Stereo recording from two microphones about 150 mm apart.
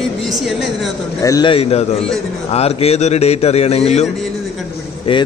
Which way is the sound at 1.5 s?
40° left (ahead or behind).